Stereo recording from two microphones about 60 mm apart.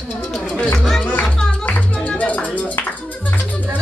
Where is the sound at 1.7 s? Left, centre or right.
Left.